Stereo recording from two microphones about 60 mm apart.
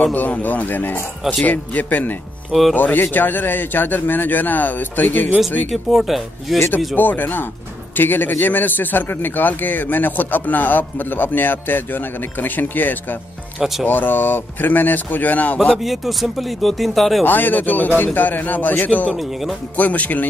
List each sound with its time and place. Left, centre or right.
0.0 s a man's voice: left
5.7 s speech: centre
7.0 s a man's voice: left
15.8 s speech: centre
17.2 s a man's voice: left